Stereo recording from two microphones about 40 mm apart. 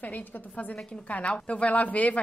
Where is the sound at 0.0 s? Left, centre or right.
Left.